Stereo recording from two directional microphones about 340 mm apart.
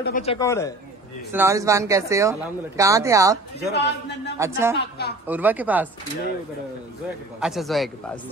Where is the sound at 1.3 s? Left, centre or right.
Centre.